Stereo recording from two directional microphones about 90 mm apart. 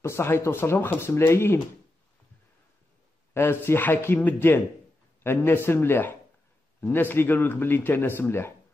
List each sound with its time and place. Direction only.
0.0 s speech: 30° left (ahead or behind)
3.3 s speech: 25° left (ahead or behind)